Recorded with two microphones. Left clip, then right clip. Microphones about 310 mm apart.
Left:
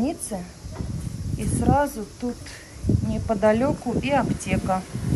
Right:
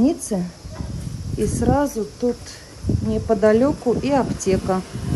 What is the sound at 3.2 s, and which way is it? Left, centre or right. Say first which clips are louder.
Speech: right 4 dB; left.